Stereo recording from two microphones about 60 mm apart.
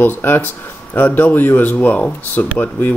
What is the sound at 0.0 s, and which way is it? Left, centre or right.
Speech, left.